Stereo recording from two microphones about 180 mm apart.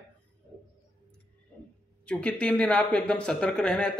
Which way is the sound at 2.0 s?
5° left (ahead or behind).